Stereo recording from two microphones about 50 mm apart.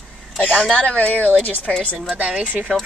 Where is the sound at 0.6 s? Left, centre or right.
Centre.